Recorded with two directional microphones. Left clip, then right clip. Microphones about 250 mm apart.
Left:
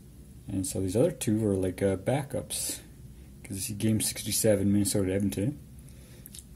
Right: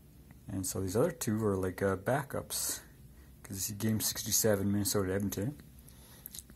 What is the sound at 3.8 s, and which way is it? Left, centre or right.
Speech, right.